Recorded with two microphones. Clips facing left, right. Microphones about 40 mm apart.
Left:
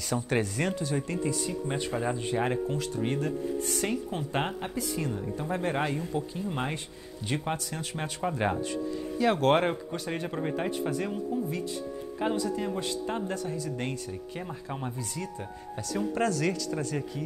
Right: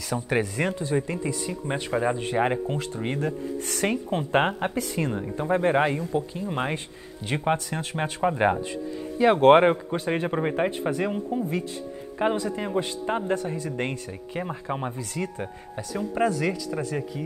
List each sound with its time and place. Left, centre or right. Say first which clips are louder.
0.4 s speech: right 3 dB; centre
3.8 s speech: right 5 dB; right
16.2 s speech: right 5 dB; centre